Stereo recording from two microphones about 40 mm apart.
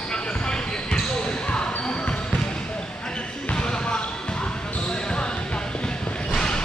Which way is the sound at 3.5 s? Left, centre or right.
Left.